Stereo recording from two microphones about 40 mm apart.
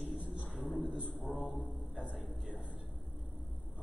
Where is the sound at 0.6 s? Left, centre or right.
Centre.